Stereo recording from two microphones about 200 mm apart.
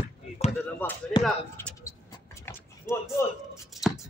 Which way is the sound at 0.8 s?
10° left (ahead or behind).